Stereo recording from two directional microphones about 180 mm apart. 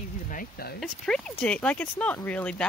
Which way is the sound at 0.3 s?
55° left (ahead or behind).